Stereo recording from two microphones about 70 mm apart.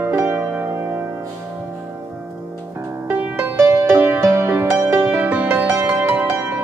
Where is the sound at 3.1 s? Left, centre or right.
Right.